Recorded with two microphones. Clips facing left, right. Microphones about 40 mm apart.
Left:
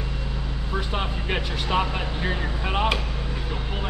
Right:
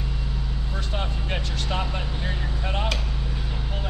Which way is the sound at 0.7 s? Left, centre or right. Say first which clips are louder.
Left 4 dB; centre.